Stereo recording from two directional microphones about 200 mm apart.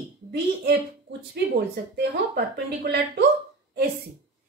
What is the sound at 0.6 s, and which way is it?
Speech, 60° right (ahead or behind).